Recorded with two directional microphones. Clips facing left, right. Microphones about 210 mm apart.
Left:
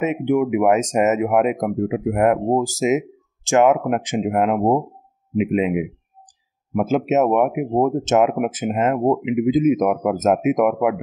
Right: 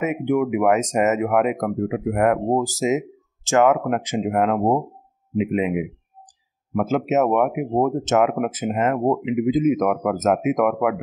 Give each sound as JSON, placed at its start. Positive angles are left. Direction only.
{"t": 0.0, "sound": "speech", "side_deg": 20}